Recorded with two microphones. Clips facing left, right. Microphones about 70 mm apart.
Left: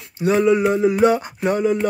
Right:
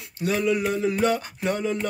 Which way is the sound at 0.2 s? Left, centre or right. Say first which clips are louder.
Left 7 dB; left.